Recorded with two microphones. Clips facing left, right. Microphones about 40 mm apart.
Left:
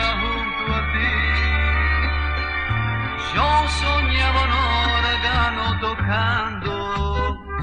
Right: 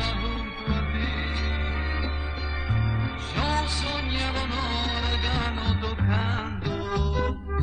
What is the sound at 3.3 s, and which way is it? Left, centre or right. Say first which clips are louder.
Music: left 9 dB; left.